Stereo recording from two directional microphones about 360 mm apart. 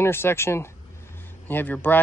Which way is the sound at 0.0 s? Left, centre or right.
Centre.